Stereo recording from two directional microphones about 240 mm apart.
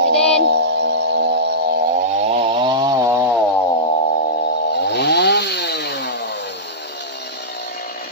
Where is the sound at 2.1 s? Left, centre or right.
Right.